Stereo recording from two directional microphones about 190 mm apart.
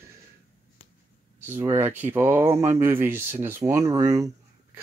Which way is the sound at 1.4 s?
15° right (ahead or behind).